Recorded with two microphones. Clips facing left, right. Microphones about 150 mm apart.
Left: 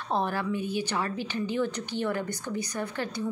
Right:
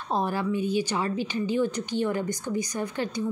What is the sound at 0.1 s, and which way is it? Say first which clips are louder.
A woman's voice: right 2 dB; 15° right (ahead or behind).